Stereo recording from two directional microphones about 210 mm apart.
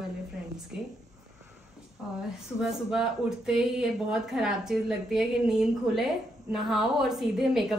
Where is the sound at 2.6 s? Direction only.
Centre (ahead or behind).